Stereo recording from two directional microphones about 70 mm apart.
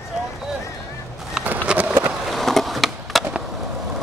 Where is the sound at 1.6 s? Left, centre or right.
Right.